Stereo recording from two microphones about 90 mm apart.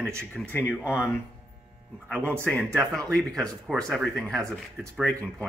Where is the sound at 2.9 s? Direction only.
10° left (ahead or behind).